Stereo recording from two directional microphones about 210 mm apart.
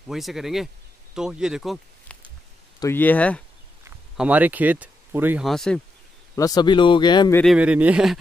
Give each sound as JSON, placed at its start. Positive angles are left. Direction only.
{"t": 0.1, "sound": "speech", "side_deg": 0}
{"t": 2.8, "sound": "speech", "side_deg": 10}
{"t": 4.2, "sound": "speech", "side_deg": -10}
{"t": 5.5, "sound": "speech", "side_deg": 0}
{"t": 6.3, "sound": "speech", "side_deg": 20}
{"t": 7.5, "sound": "speech", "side_deg": -5}